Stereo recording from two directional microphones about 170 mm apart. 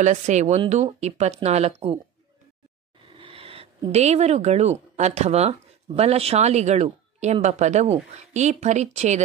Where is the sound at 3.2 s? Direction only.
30° right (ahead or behind).